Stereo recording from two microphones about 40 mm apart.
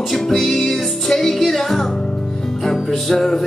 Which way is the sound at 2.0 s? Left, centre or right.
Centre.